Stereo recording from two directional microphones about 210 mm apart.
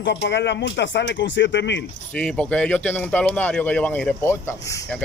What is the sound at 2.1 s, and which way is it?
Speech, 5° left (ahead or behind).